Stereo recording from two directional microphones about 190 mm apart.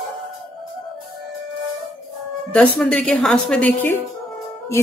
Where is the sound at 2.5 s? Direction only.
5° left (ahead or behind).